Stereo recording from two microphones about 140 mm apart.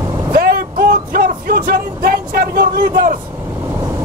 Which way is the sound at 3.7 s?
20° right (ahead or behind).